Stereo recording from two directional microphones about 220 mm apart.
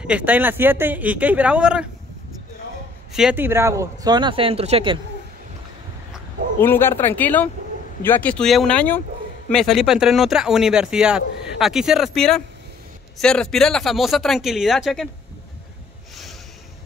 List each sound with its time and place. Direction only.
0.0 s speech: 5° right (ahead or behind)
3.1 s speech: 5° right (ahead or behind); by 4.9 s 25° right (ahead or behind)
6.6 s speech: 10° left (ahead or behind)